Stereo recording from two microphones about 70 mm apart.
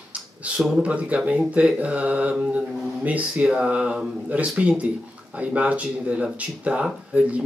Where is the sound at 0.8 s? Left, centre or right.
Centre.